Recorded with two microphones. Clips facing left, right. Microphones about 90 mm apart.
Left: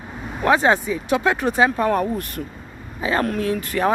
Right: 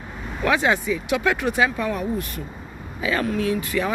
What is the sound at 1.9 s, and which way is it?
Speech, 50° left (ahead or behind).